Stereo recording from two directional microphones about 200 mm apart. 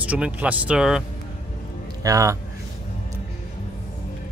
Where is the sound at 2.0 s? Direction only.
15° right (ahead or behind).